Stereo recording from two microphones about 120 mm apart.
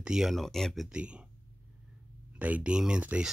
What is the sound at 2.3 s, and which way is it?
Speech, 10° right (ahead or behind).